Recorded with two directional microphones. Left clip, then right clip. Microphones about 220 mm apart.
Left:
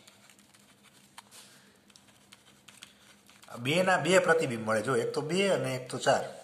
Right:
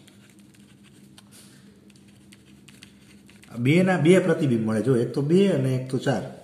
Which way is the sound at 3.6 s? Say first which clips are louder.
Right 6 dB; 25° left (ahead or behind).